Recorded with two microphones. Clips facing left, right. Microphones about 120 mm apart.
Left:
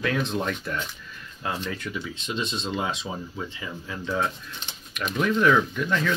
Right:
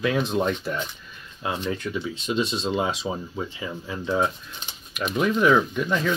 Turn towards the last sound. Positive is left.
turn(degrees=-15)  # may be behind; listen again after turning